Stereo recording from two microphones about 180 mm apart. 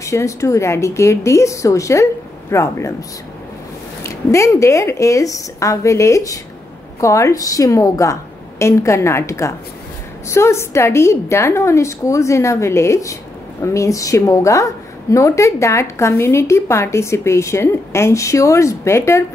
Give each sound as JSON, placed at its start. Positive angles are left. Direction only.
{"t": 0.0, "sound": "a woman's voice", "side_deg": 15}
{"t": 4.0, "sound": "a woman's voice", "side_deg": 15}